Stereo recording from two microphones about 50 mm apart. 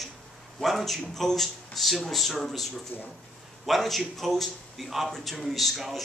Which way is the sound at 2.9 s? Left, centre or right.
Left.